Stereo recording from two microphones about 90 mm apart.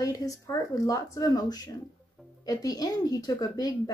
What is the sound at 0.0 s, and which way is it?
A woman's voice, 40° left (ahead or behind).